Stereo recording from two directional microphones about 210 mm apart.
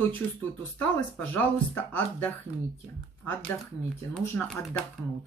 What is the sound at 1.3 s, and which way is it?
Speech, 10° left (ahead or behind).